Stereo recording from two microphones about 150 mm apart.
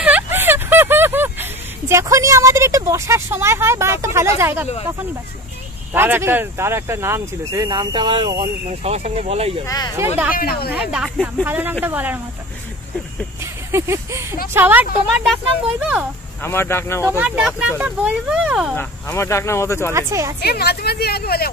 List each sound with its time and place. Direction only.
0.0 s a sound: 10° right (ahead or behind)
5.9 s speech: 15° right (ahead or behind); by 8.4 s 30° right (ahead or behind)
8.4 s speech: 45° right (ahead or behind)
9.7 s speech: 25° left (ahead or behind)
10.3 s speech: 85° left
10.7 s speech: 5° right (ahead or behind)
13.4 s a sound: 20° right (ahead or behind)
14.5 s speech: 15° right (ahead or behind)
16.4 s speech: 15° left (ahead or behind)
17.0 s speech: 10° right (ahead or behind)
18.8 s speech: 15° left (ahead or behind)
19.9 s speech: 20° right (ahead or behind)
20.3 s speech: 90° left